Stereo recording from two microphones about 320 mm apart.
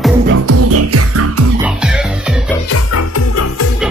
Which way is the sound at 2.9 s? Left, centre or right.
Left.